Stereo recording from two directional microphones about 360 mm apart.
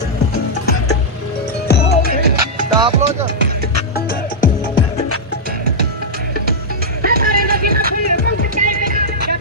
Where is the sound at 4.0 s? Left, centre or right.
Left.